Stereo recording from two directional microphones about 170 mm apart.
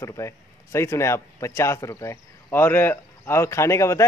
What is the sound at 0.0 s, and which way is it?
A man's voice, 15° left (ahead or behind).